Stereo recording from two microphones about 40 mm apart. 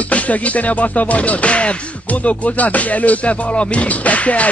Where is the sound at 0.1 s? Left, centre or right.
Left.